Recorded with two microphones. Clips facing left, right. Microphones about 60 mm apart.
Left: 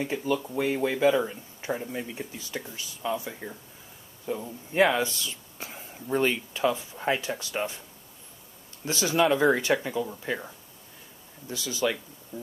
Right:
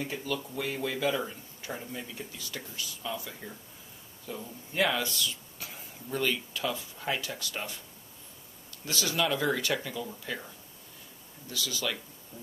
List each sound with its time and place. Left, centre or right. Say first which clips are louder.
0.0 s speech: left 6 dB; left
8.8 s speech: left 6 dB; left